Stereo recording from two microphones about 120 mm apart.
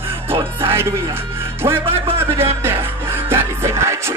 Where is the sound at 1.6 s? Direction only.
35° right (ahead or behind).